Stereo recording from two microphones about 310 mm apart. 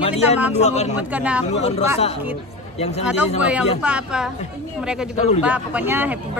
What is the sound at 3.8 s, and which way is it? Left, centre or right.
Speech, centre.